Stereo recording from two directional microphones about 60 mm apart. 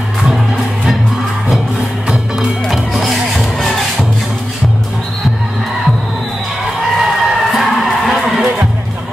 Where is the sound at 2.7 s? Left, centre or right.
Centre.